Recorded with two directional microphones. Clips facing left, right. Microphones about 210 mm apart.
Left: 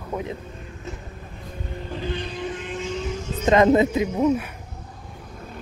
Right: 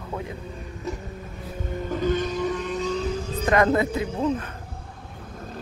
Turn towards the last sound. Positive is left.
turn(degrees=10)  # may be behind; listen again after turning